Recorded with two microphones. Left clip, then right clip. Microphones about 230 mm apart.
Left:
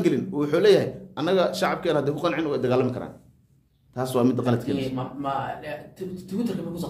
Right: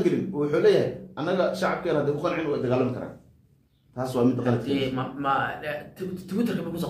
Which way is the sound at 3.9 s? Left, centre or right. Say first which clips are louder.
Left 3 dB; left.